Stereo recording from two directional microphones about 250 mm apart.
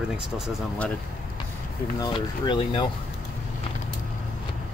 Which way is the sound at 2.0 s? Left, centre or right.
Centre.